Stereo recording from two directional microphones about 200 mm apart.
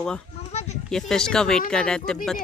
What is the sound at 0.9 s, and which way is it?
A woman's voice, 5° left (ahead or behind).